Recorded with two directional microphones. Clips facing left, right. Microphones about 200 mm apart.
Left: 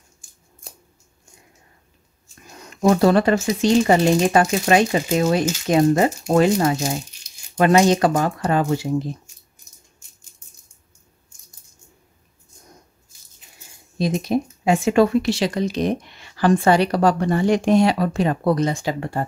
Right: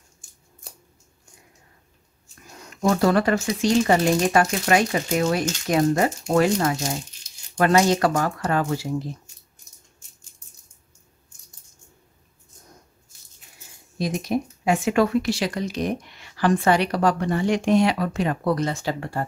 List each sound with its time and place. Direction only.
2.9 s speech: 25° left (ahead or behind)
13.9 s speech: 25° left (ahead or behind)